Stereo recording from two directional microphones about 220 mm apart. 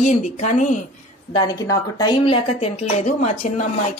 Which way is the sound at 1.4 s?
15° left (ahead or behind).